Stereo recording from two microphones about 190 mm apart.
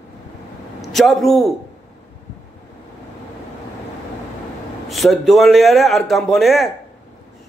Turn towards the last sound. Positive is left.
turn(degrees=0)  # may be behind; listen again after turning